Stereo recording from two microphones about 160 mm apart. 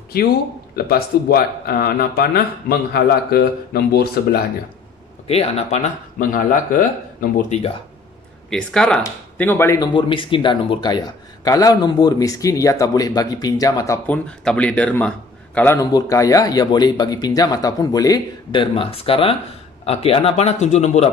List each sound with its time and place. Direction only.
0.7 s speech: 70° left (ahead or behind)
5.3 s speech: 40° left (ahead or behind)
6.1 s speech: 60° left (ahead or behind)
8.5 s a man's voice: 5° left (ahead or behind)
9.9 s a man's voice: 30° left (ahead or behind)
14.0 s a man's voice: 10° left (ahead or behind); by 21.1 s 45° left (ahead or behind)